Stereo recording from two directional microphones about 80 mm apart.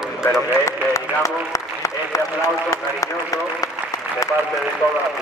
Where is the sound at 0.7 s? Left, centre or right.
Left.